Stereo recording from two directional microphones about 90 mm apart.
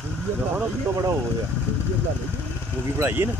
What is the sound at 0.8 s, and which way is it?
Speech, 40° right (ahead or behind).